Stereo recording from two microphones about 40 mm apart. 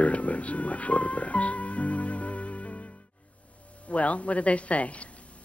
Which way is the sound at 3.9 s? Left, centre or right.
Left.